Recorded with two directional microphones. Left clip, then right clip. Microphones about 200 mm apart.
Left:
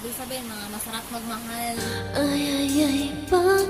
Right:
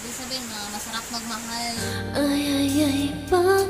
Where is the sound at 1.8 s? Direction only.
Centre (ahead or behind).